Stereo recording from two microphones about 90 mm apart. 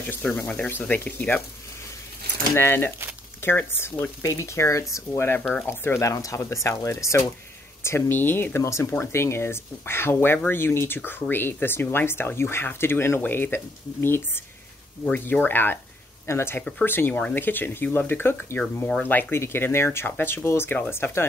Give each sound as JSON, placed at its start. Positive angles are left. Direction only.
{"t": 0.6, "sound": "speech", "side_deg": 20}
{"t": 2.5, "sound": "speech", "side_deg": 25}